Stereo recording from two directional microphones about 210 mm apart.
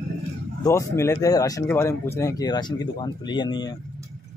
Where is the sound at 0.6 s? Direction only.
15° left (ahead or behind).